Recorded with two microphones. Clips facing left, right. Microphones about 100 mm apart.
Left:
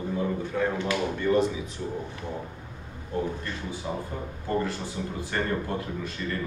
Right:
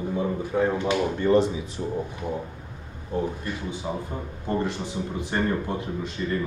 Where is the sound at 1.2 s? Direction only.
30° right (ahead or behind).